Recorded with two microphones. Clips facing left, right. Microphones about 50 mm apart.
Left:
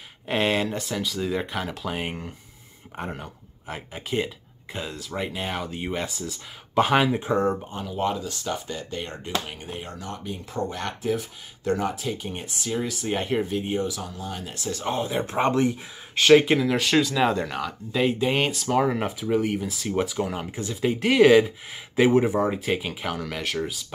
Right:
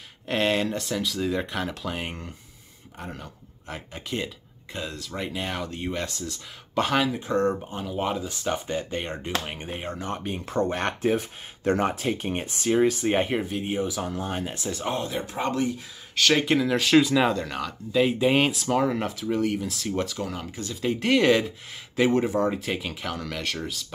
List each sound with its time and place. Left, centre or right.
0.3 s speech: centre
7.1 s speech: left
7.7 s speech: centre; by 13.3 s right
13.3 s speech: centre
13.8 s speech: right
14.1 s speech: right
14.4 s speech: right
15.2 s speech: left
16.2 s speech: centre
16.5 s speech: centre
17.5 s speech: centre
18.8 s speech: centre
20.9 s speech: centre